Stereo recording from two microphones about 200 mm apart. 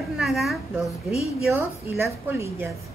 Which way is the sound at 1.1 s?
30° left (ahead or behind).